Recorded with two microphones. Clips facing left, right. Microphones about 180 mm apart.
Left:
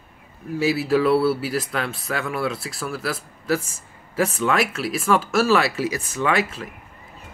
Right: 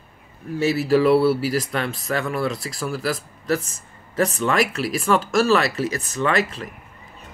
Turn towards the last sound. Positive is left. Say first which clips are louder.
# right 1 dB
turn(degrees=5)  # may be behind; listen again after turning